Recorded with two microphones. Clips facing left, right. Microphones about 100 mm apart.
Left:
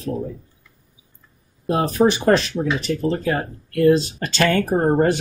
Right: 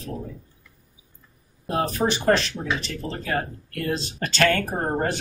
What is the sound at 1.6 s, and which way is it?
Speech, 15° left (ahead or behind).